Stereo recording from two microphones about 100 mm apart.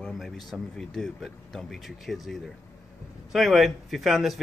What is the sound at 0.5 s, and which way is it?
Speech, 5° left (ahead or behind).